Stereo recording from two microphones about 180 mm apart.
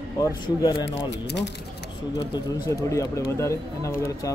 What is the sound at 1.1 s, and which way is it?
Speech, 75° left (ahead or behind).